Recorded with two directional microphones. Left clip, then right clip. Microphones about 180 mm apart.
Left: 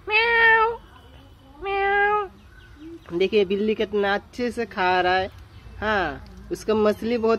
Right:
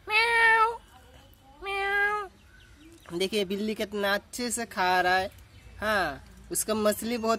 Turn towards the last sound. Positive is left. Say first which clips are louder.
# left 5 dB
turn(degrees=-20)  # may be behind; listen again after turning